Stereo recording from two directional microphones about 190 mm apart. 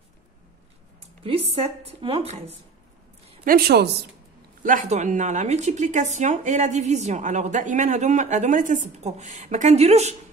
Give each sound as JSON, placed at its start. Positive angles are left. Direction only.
{"t": 1.2, "sound": "speech", "side_deg": -30}
{"t": 3.4, "sound": "a woman's voice", "side_deg": -55}
{"t": 4.6, "sound": "speech", "side_deg": -40}